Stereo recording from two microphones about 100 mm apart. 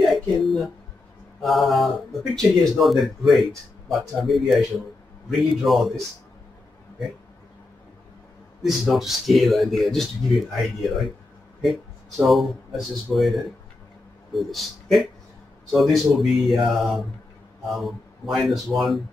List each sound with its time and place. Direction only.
0.0 s a sound: centre (ahead or behind)
1.4 s speech: centre (ahead or behind)
8.6 s speech: 5° right (ahead or behind)
12.2 s speech: centre (ahead or behind)